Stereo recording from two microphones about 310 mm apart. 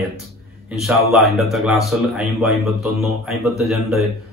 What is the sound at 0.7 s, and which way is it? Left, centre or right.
A man's voice, centre.